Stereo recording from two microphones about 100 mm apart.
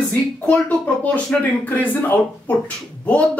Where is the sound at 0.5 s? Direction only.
15° left (ahead or behind).